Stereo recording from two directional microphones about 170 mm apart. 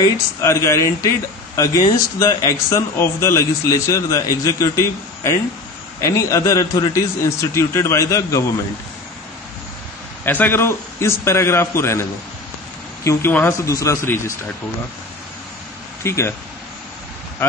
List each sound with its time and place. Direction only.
0.0 s speech: 20° left (ahead or behind)
10.2 s speech: 10° left (ahead or behind)
16.0 s speech: 15° left (ahead or behind)